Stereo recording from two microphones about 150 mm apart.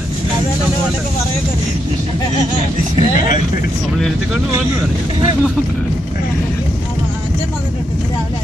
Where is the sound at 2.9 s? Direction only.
55° left (ahead or behind).